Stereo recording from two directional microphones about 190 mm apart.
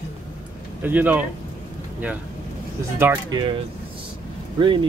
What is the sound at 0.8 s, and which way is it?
Speech, 10° right (ahead or behind).